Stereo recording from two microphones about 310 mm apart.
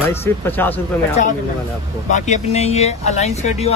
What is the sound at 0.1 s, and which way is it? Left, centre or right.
Speech, centre.